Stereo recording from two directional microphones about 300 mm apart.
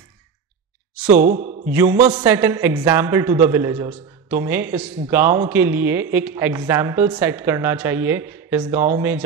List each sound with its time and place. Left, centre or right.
1.2 s a man's voice: right
1.7 s speech: centre